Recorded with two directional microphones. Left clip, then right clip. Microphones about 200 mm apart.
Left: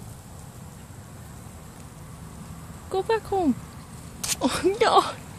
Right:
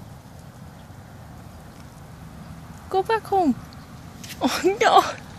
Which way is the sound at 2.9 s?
5° right (ahead or behind).